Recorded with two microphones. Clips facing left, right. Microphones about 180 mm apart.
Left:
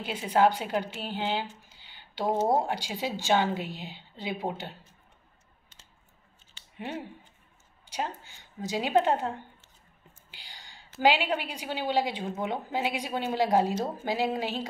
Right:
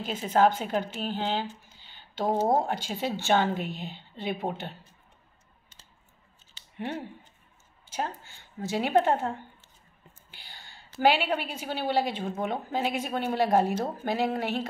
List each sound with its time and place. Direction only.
0.0 s a woman's voice: 10° left (ahead or behind)
1.7 s a sound: 15° left (ahead or behind)
2.4 s a woman's voice: 10° left (ahead or behind)
6.8 s a woman's voice: 10° left (ahead or behind)
10.3 s whispering: 15° left (ahead or behind)
11.0 s a woman's voice: 15° left (ahead or behind)